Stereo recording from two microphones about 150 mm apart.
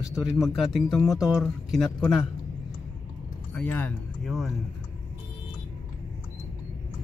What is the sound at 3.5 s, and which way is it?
Speech, 10° left (ahead or behind).